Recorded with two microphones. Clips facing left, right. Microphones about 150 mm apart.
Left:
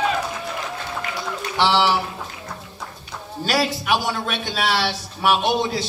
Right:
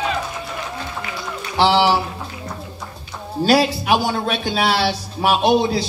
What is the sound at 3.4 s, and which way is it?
A man's voice, 35° right (ahead or behind).